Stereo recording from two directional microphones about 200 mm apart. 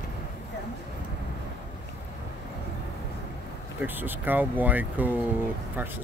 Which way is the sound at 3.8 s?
10° right (ahead or behind).